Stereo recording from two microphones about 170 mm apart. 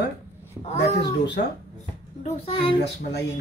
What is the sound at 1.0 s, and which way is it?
Speech, 80° left.